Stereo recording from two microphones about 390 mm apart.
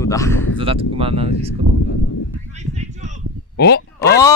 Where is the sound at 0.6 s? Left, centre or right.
Centre.